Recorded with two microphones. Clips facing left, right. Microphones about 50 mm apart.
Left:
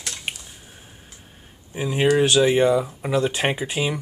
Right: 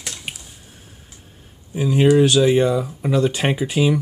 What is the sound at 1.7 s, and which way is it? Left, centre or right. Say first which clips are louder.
Speech: right 4 dB; left.